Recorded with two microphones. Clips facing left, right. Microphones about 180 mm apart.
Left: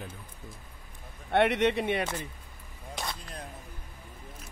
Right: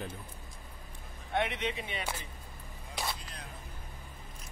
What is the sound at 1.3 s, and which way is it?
Speech, 70° left (ahead or behind).